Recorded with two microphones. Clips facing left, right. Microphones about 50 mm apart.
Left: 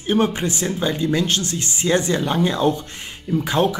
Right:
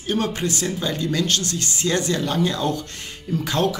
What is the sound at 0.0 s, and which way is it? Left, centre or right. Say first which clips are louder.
Speech: left 4 dB; left.